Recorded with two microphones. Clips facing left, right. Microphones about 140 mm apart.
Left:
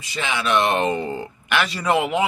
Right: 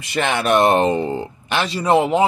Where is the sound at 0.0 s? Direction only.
60° right (ahead or behind).